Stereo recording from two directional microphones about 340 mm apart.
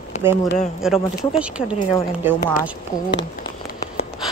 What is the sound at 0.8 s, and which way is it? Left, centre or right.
Speech, centre.